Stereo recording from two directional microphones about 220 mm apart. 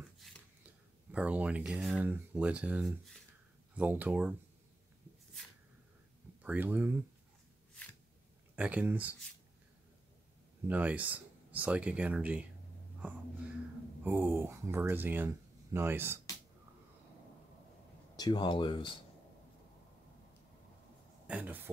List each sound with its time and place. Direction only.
0.2 s speech: centre (ahead or behind)
6.4 s speech: 5° right (ahead or behind)
8.5 s speech: 5° right (ahead or behind)
10.7 s speech: 5° right (ahead or behind)
14.0 s speech: 10° right (ahead or behind)
18.1 s speech: 20° left (ahead or behind)
21.3 s speech: 5° right (ahead or behind)